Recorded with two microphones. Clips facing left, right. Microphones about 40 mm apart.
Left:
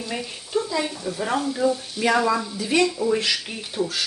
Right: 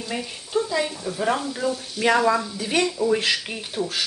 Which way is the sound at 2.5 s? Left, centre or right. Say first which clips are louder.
Left 2 dB; right.